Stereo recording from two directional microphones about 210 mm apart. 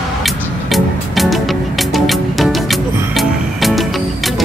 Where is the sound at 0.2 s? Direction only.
Centre (ahead or behind).